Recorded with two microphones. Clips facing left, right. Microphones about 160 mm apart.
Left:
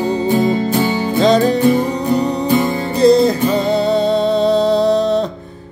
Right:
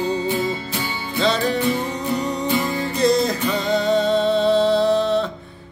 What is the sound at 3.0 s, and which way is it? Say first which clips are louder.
Music: left 8 dB; 30° left (ahead or behind).